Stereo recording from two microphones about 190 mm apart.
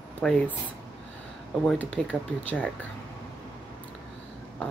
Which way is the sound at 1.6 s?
5° left (ahead or behind).